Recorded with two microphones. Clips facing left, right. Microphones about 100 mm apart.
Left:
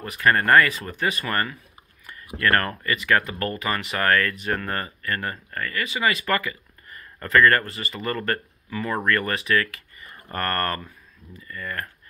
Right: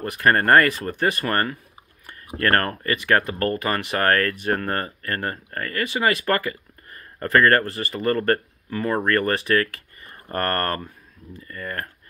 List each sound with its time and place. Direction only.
0.2 s speech: 40° right (ahead or behind)